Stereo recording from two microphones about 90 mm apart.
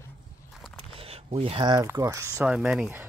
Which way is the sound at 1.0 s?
90° right.